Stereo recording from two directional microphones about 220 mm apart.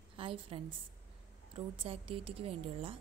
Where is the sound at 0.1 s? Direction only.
25° right (ahead or behind).